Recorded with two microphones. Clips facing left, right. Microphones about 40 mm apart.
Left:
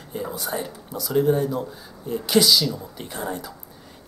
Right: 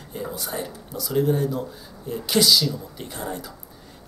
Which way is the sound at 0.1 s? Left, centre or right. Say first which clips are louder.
Left 2 dB; centre.